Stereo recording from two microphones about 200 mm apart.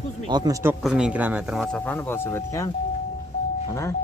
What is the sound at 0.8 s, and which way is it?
Speech, 5° right (ahead or behind).